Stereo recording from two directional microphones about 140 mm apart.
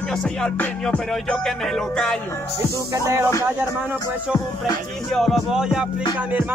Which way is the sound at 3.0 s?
15° right (ahead or behind).